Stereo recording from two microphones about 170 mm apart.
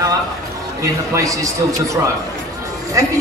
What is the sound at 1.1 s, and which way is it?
Speech, 20° right (ahead or behind).